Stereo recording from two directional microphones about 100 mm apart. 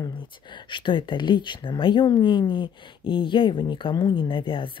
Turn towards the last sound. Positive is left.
turn(degrees=55)  # may be behind; listen again after turning